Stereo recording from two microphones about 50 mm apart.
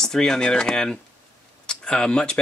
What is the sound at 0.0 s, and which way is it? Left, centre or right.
Speech, centre.